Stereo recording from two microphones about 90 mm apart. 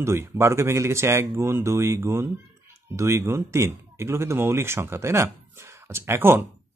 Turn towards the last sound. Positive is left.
turn(degrees=-25)  # may be behind; listen again after turning